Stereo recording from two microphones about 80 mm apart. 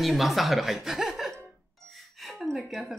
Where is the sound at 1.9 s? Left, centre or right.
Centre.